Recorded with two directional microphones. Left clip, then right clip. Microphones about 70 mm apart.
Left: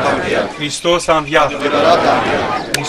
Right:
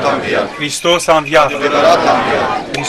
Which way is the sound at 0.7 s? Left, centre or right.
Right.